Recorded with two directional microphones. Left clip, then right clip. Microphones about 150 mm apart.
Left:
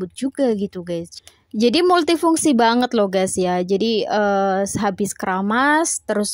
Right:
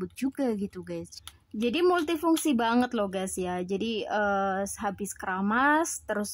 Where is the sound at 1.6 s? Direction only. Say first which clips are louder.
Left 10 dB; 50° left (ahead or behind).